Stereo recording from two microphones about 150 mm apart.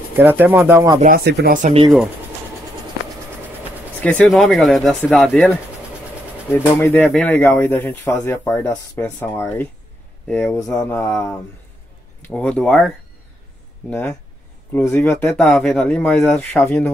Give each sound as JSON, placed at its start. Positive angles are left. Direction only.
{"t": 0.1, "sound": "speech", "side_deg": -15}
{"t": 1.0, "sound": "speech", "side_deg": -85}
{"t": 4.0, "sound": "speech", "side_deg": 10}
{"t": 4.3, "sound": "speech", "side_deg": 0}
{"t": 6.5, "sound": "speech", "side_deg": 15}
{"t": 10.5, "sound": "speech", "side_deg": 20}
{"t": 15.0, "sound": "speech", "side_deg": 15}
{"t": 15.3, "sound": "speech", "side_deg": 0}